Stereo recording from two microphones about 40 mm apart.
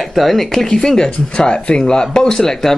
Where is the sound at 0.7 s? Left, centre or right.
Centre.